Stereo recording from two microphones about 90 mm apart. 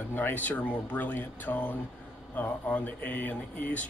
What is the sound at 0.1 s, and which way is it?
Speech, 20° left (ahead or behind).